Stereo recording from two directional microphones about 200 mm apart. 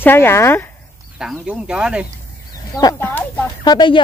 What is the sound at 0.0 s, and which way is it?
Speech, 10° left (ahead or behind).